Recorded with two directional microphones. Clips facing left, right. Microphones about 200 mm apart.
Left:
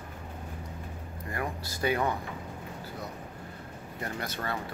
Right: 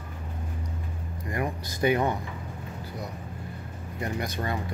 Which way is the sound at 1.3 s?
20° right (ahead or behind).